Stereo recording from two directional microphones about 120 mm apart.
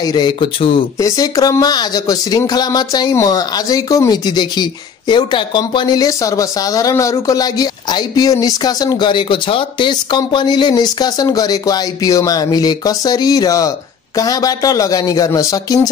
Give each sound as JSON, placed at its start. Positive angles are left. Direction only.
{"t": 0.0, "sound": "speech", "side_deg": 35}
{"t": 1.0, "sound": "speech", "side_deg": 30}